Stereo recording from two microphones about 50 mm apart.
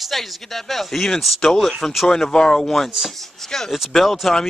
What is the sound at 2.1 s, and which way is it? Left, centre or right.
A man's voice, centre.